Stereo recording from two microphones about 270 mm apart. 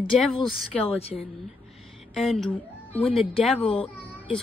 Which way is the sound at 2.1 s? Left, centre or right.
Centre.